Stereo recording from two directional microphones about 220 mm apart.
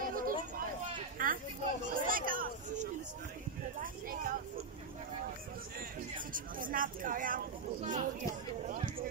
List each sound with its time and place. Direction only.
0.0 s a sound: 40° right (ahead or behind)
3.8 s speech: 40° right (ahead or behind)
6.3 s speech: 40° right (ahead or behind)